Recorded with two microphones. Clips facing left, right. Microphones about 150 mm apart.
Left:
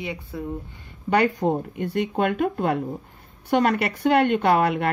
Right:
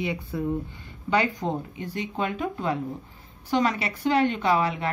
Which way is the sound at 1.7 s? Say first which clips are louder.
Left 7 dB; 60° left (ahead or behind).